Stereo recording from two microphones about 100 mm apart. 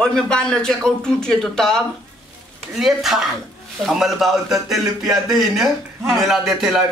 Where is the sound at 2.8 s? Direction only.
5° right (ahead or behind).